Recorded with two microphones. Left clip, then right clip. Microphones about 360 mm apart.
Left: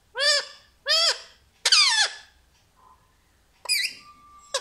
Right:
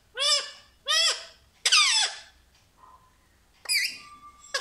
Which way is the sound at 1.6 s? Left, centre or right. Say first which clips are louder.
Left 2 dB; centre.